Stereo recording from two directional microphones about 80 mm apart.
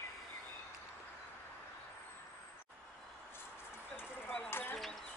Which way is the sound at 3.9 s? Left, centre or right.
Left.